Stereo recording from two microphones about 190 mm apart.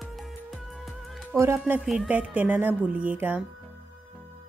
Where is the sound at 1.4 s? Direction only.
15° right (ahead or behind).